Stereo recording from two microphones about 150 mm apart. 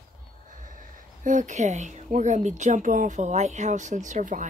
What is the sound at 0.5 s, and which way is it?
Speech, 60° right (ahead or behind).